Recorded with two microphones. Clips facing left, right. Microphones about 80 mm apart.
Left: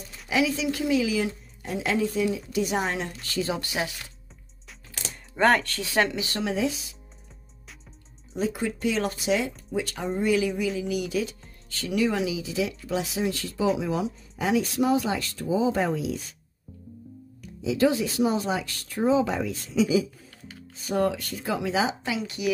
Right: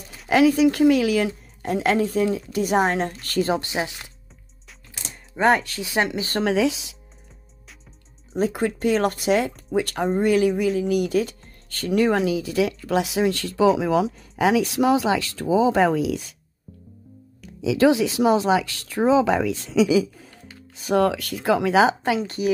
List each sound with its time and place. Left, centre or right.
0.3 s a woman's voice: right
3.5 s speech: right
5.0 s a sound: centre
5.9 s speech: centre
6.1 s speech: right
6.4 s speech: right
8.3 s a woman's voice: right
17.6 s speech: right
20.8 s speech: right